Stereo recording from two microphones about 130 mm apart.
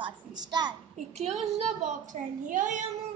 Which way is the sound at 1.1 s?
55° right (ahead or behind).